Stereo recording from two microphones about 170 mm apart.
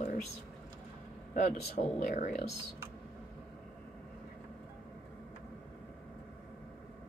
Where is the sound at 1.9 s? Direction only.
50° left (ahead or behind).